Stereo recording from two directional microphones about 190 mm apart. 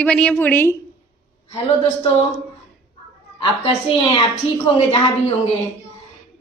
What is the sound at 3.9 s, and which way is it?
A woman's voice, 30° left (ahead or behind).